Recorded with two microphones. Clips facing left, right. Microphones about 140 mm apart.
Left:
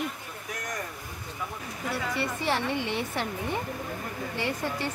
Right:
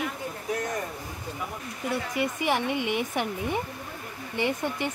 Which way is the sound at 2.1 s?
15° right (ahead or behind).